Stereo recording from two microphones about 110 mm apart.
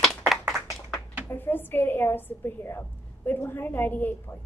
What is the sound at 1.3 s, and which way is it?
A woman's voice, 20° left (ahead or behind).